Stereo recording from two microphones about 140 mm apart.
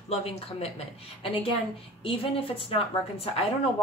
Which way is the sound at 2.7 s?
45° left (ahead or behind).